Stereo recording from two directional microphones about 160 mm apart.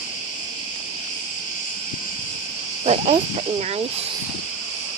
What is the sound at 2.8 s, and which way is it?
Speech, 40° right (ahead or behind).